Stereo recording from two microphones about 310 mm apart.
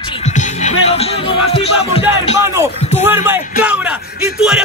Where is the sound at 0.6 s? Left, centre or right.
Left.